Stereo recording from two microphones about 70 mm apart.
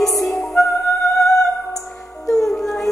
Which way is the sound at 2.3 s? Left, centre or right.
Left.